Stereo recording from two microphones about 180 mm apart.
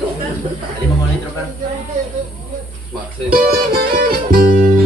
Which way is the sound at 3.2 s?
55° right (ahead or behind).